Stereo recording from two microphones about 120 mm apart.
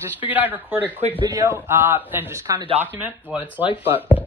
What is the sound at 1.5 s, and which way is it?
Speech, 20° right (ahead or behind).